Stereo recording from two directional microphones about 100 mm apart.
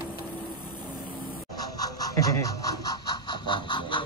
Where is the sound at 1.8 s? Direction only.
40° left (ahead or behind).